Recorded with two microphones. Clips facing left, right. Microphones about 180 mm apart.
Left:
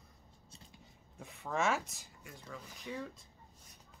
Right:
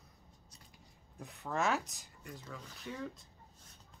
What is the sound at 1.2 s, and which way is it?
Speech, centre (ahead or behind).